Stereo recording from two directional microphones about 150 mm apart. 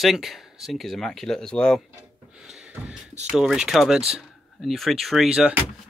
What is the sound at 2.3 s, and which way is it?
Gasp, 5° right (ahead or behind).